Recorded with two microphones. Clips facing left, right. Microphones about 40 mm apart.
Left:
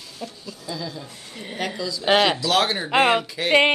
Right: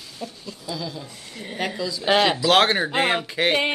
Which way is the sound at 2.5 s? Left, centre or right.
Right.